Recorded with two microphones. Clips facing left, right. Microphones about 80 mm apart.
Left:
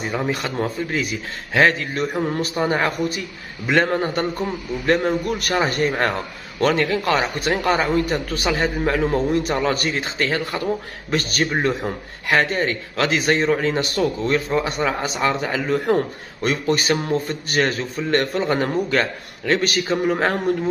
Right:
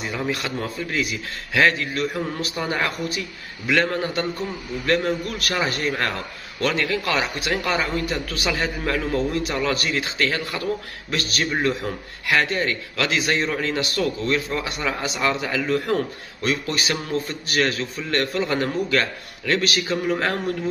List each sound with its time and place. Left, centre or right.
0.9 s a man's voice: left